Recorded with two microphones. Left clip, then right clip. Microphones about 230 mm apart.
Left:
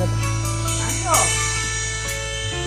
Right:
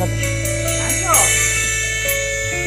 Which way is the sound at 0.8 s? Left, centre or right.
Centre.